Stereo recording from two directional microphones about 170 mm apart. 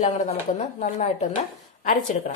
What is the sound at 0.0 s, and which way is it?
Speech, 45° left (ahead or behind).